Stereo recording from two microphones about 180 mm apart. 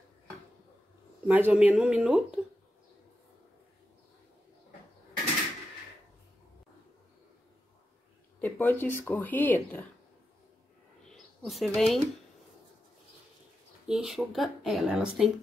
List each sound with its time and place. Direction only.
1.2 s speech: 10° right (ahead or behind)
8.4 s speech: 10° left (ahead or behind)
11.1 s a sound: centre (ahead or behind)
13.8 s speech: 5° right (ahead or behind)